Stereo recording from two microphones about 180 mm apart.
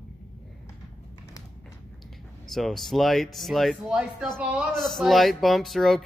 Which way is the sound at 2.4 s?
Centre (ahead or behind).